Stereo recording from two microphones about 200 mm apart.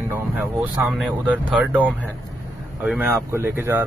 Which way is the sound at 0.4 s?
10° right (ahead or behind).